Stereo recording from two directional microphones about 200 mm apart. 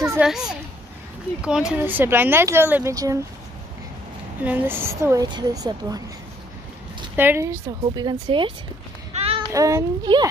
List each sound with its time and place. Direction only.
0.0 s a woman's voice: 15° right (ahead or behind)
4.4 s a woman's voice: 10° right (ahead or behind)
7.2 s a woman's voice: 10° right (ahead or behind)
9.1 s child singing: 30° right (ahead or behind)
9.5 s a woman's voice: 15° right (ahead or behind)